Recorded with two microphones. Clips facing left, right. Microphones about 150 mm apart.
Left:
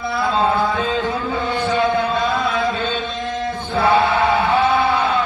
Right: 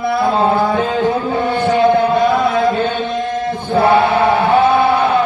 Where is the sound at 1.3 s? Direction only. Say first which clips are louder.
Right 5 dB; 60° right (ahead or behind).